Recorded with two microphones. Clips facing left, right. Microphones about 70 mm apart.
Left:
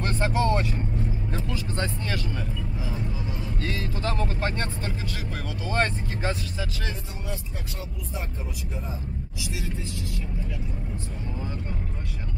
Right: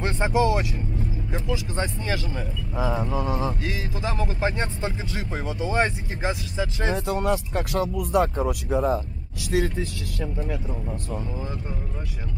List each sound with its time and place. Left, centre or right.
0.0 s speech: centre
2.8 s speech: right
3.6 s speech: centre
6.9 s speech: right